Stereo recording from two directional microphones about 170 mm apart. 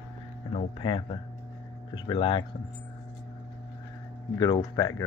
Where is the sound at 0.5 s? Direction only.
35° left (ahead or behind).